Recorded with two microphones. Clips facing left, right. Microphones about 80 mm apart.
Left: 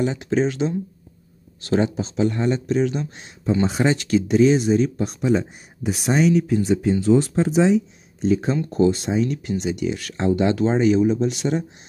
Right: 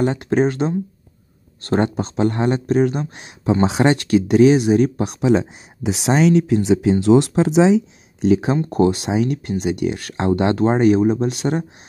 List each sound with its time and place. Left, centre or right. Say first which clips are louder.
0.0 s speech: right 3 dB; right
3.6 s speech: right 6 dB; right
8.6 s speech: right 2 dB; right